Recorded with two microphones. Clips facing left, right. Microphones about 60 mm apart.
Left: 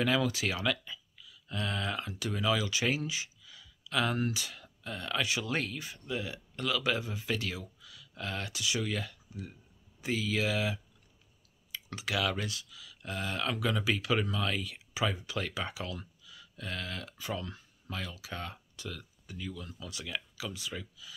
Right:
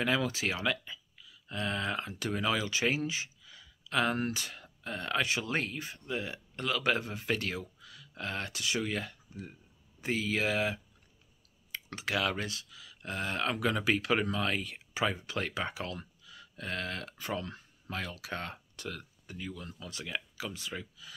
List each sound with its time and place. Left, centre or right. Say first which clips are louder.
0.0 s speech: left 1 dB; right
6.8 s speech: right 2 dB; right
18.1 s speech: right 2 dB; right
19.3 s speech: even; right